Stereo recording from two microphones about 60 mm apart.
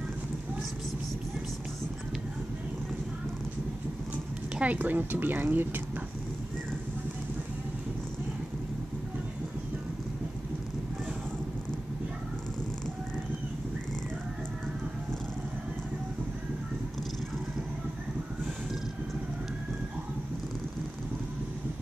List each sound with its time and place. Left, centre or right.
4.6 s a woman's voice: right